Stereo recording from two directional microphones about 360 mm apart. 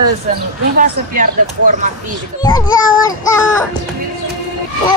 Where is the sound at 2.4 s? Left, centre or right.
Centre.